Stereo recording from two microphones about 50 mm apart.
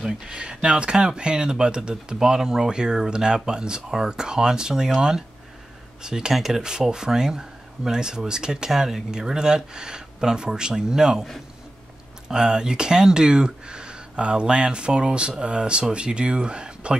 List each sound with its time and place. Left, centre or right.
0.0 s speech: centre
12.3 s speech: centre